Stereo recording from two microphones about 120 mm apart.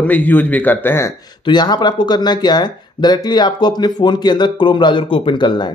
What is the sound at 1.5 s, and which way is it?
Speech, 35° left (ahead or behind).